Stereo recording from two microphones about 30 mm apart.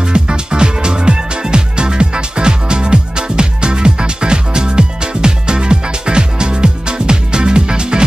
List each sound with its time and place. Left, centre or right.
0.0 s music: right